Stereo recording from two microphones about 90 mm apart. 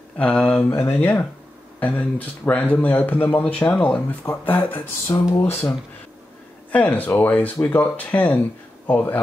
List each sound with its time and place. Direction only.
0.2 s a man's voice: 10° left (ahead or behind)
0.7 s a man's voice: 25° left (ahead or behind)
5.1 s speech: 50° left (ahead or behind)
6.7 s speech: 15° left (ahead or behind)